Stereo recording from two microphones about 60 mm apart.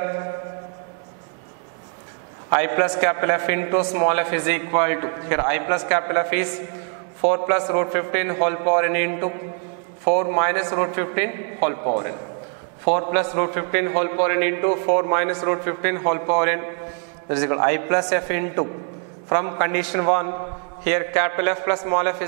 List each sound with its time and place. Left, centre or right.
2.5 s a man's voice: centre